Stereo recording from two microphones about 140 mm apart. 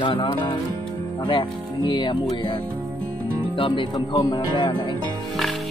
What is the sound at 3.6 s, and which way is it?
Speech, 35° left (ahead or behind).